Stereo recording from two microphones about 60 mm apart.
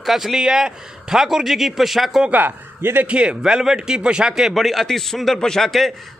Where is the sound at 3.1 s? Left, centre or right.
Centre.